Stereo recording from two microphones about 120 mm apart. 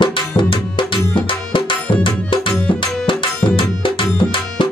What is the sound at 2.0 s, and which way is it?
Music, 45° left (ahead or behind).